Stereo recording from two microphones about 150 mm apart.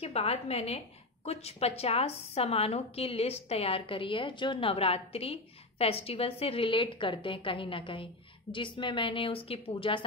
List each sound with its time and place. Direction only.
0.0 s a woman's voice: 40° left (ahead or behind)